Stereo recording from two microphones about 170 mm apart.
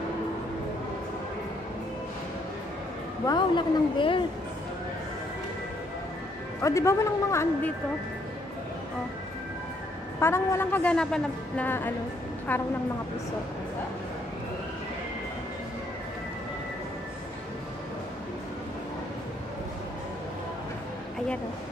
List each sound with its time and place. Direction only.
3.3 s a woman's voice: 25° left (ahead or behind)
6.6 s a woman's voice: 15° left (ahead or behind)
10.2 s a woman's voice: 15° left (ahead or behind)